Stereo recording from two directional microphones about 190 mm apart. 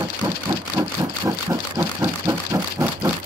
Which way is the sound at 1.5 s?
20° right (ahead or behind).